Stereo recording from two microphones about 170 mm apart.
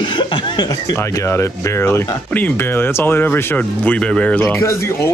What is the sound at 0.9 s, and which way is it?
Speech, 15° left (ahead or behind).